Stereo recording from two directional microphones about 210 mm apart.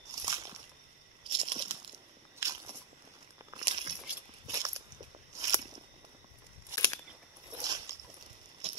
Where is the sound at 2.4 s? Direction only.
15° right (ahead or behind).